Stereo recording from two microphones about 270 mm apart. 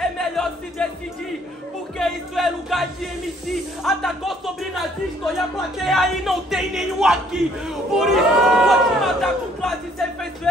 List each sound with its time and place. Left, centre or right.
0.0 s music: centre
2.0 s music: centre
3.8 s a sound: centre
5.9 s music: centre